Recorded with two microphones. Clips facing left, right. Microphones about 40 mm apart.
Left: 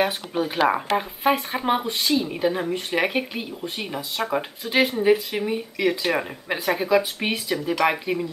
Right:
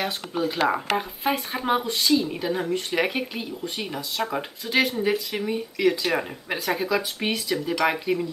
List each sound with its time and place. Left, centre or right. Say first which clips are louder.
0.0 s speech: left 3 dB; left
0.9 s speech: left 4 dB; centre